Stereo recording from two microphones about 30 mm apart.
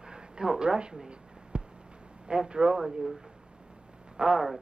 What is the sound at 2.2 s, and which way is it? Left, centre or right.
Speech, right.